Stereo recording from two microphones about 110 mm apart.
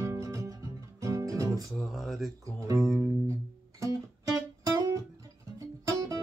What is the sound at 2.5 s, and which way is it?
Speech, 30° right (ahead or behind).